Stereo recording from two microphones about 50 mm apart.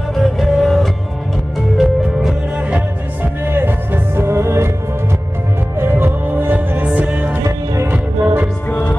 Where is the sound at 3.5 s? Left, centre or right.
Right.